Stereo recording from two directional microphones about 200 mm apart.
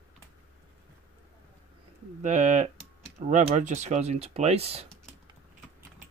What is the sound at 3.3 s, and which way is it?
Speech, 35° right (ahead or behind).